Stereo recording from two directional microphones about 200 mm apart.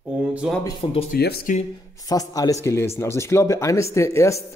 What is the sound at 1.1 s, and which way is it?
Speech, 50° left (ahead or behind).